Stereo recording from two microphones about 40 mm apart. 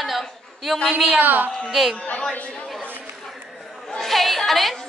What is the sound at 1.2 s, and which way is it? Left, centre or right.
Speech, right.